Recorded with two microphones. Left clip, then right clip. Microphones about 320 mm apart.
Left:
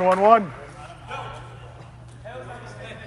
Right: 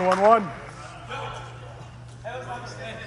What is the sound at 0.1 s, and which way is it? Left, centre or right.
Speech, left.